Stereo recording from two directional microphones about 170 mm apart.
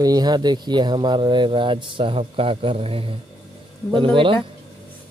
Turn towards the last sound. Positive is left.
turn(degrees=-30)  # may be behind; listen again after turning